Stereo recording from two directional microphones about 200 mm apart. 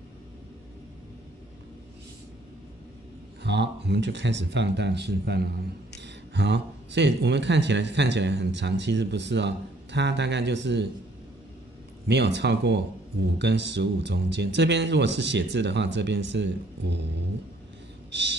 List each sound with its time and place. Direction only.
3.4 s speech: 60° right (ahead or behind)
12.1 s speech: 60° right (ahead or behind)